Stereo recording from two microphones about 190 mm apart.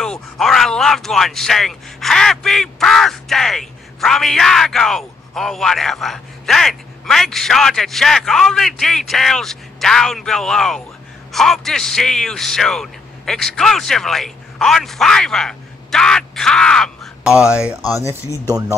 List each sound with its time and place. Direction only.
0.0 s speech: centre (ahead or behind)
18.5 s speech: 15° right (ahead or behind)